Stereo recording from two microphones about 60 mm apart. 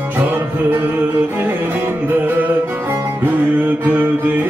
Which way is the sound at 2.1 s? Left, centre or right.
Right.